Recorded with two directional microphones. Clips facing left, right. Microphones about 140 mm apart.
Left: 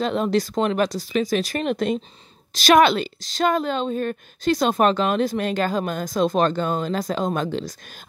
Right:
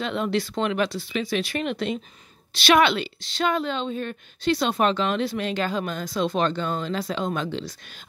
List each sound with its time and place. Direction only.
0.0 s a woman's voice: 40° left (ahead or behind)